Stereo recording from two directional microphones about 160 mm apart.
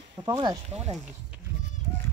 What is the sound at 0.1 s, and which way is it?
Speech, 25° right (ahead or behind).